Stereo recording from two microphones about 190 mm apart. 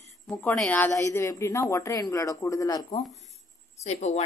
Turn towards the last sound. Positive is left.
turn(degrees=35)  # may be behind; listen again after turning